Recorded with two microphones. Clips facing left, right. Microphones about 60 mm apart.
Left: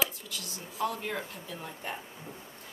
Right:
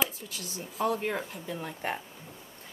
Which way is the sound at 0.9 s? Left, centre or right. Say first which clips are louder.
Right 4 dB; right.